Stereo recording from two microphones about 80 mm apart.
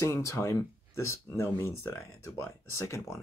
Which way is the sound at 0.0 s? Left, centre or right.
Left.